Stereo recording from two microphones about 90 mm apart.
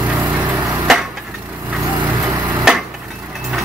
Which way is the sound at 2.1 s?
45° right (ahead or behind).